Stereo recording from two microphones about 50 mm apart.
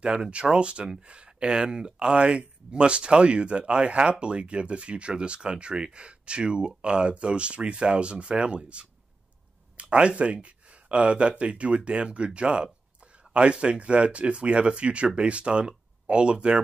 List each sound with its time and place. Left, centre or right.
0.0 s speech: right